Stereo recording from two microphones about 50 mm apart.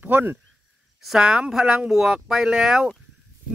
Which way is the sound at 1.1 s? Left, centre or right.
Centre.